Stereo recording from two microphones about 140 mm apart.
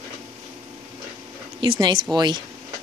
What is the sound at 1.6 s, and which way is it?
Speech, 35° right (ahead or behind).